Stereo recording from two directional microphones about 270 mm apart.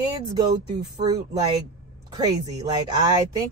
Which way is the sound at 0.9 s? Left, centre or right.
Centre.